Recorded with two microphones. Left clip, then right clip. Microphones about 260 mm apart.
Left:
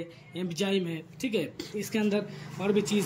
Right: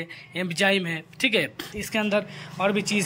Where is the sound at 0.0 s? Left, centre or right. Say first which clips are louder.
Right 6 dB; right.